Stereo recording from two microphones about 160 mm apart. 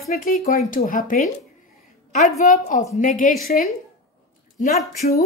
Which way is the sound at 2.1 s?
50° left (ahead or behind).